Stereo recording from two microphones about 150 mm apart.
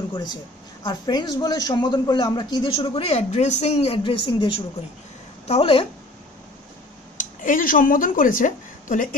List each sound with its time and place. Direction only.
0.1 s a woman's voice: 30° left (ahead or behind)
7.2 s a woman's voice: 60° left (ahead or behind)